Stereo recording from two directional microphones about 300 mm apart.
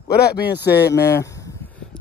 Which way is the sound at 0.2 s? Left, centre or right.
Left.